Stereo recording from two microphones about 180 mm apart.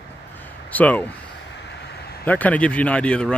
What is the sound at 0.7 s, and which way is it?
Speech, 10° left (ahead or behind).